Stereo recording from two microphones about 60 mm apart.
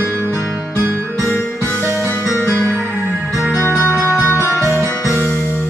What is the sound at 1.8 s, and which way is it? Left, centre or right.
Music, right.